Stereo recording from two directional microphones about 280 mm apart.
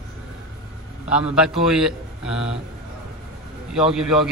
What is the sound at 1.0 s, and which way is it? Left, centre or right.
Speech, centre.